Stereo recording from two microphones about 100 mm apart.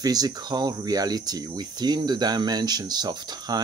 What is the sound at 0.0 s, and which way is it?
Speech, 40° right (ahead or behind).